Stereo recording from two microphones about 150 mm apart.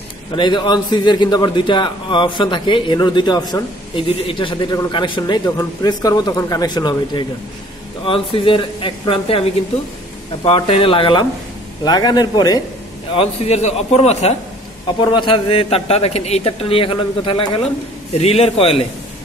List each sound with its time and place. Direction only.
0.4 s a man's voice: 30° left (ahead or behind)
13.1 s a man's voice: 40° left (ahead or behind)